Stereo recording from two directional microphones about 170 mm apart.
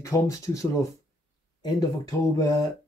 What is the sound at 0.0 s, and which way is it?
Speech, 20° left (ahead or behind).